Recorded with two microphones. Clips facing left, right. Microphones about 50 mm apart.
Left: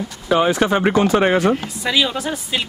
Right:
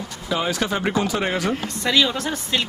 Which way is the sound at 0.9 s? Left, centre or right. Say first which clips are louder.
Left 7 dB; left.